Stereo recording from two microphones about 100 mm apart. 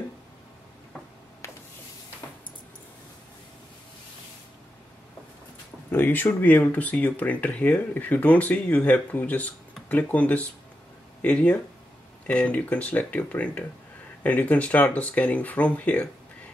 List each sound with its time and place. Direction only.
5.9 s speech: 20° left (ahead or behind)